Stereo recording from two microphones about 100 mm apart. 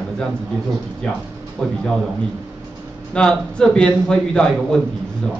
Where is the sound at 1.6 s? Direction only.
5° left (ahead or behind).